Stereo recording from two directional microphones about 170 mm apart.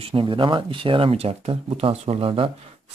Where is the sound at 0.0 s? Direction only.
30° right (ahead or behind).